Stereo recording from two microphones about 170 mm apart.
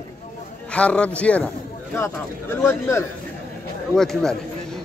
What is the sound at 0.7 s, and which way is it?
Speech, 5° left (ahead or behind).